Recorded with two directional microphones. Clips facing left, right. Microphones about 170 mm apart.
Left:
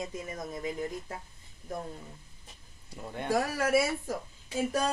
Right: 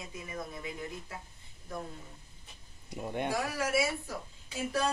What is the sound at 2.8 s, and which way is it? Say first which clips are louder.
Speech: right 3 dB; 20° right (ahead or behind).